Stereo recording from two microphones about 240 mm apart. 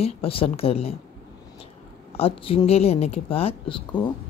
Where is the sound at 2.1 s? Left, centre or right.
Left.